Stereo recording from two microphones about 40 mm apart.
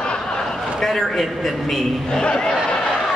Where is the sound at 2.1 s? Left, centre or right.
Centre.